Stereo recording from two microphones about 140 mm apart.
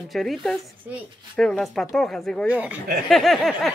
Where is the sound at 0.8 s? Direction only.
10° right (ahead or behind).